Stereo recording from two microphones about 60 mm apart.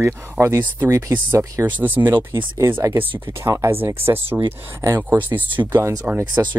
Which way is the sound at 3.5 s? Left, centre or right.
Right.